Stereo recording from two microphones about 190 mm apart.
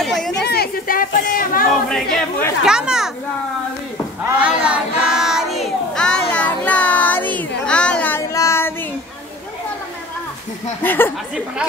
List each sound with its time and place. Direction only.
0.0 s a sound: centre (ahead or behind)
0.4 s speech: 55° left (ahead or behind)
1.9 s a child's voice: centre (ahead or behind)
4.4 s child singing: 5° right (ahead or behind); by 8.7 s 15° left (ahead or behind)
10.8 s speech: 10° left (ahead or behind)